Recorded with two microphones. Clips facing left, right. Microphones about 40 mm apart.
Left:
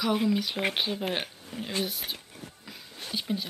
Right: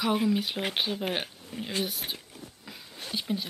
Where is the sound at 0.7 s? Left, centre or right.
Centre.